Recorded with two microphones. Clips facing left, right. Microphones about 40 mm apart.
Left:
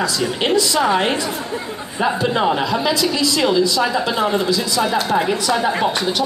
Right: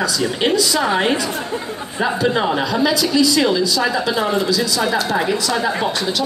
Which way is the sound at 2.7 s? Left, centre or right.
Centre.